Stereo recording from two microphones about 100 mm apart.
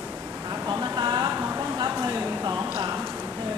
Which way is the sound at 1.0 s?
45° right (ahead or behind).